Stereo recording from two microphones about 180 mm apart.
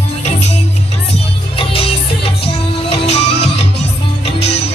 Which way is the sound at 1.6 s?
30° left (ahead or behind).